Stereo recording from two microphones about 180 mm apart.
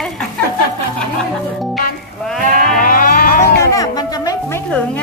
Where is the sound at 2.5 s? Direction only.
50° right (ahead or behind).